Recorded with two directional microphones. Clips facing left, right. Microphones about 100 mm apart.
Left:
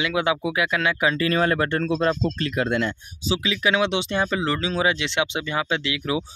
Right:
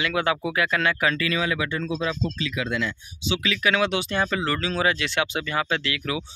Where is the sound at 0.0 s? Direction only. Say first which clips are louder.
Left 1 dB; 15° left (ahead or behind).